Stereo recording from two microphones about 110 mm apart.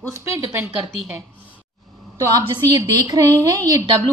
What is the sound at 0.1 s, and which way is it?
Speech, 30° right (ahead or behind).